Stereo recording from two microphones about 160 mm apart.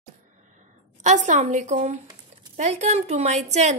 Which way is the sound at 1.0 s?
50° right (ahead or behind).